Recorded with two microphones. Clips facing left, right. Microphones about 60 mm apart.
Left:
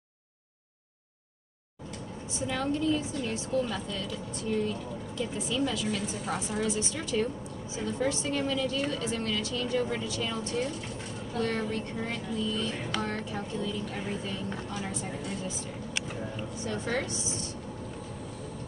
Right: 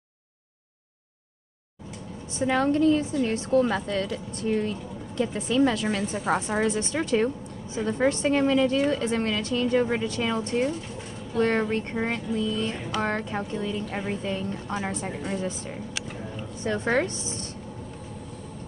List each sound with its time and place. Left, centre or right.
2.3 s a woman's voice: right
16.6 s a woman's voice: right